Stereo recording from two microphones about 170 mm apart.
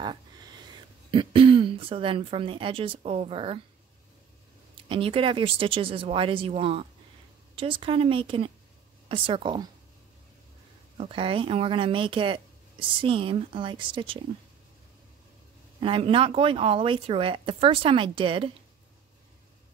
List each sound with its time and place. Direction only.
0.0 s a sound: 25° right (ahead or behind)
1.1 s speech: 30° right (ahead or behind)
4.8 s a woman's voice: 30° right (ahead or behind)
11.0 s speech: 30° right (ahead or behind)
15.8 s speech: 30° right (ahead or behind)